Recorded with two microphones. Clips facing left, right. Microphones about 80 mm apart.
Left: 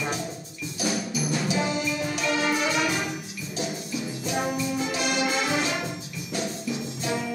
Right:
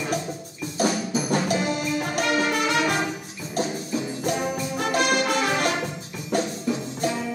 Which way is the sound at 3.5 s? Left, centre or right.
Right.